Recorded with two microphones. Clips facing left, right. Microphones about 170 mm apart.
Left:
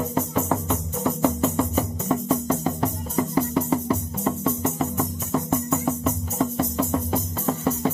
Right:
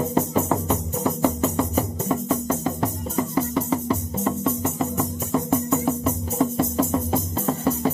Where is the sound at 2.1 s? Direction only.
Centre (ahead or behind).